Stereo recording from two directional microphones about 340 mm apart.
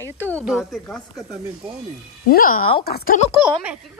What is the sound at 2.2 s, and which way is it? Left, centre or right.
Speech, left.